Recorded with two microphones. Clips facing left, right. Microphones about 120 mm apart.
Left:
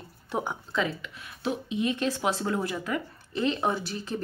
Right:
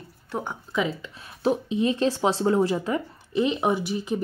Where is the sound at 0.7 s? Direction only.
15° right (ahead or behind).